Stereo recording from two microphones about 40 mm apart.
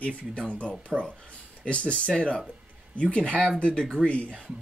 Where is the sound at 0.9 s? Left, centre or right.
Centre.